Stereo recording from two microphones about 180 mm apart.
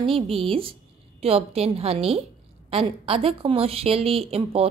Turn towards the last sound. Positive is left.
turn(degrees=-35)  # may be behind; listen again after turning